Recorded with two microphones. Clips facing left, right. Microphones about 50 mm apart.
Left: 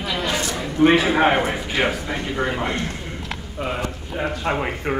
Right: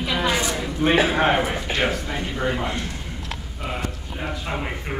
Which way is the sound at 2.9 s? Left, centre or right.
Left.